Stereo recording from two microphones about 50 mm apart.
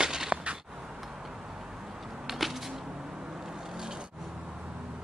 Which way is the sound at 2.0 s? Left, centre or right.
Centre.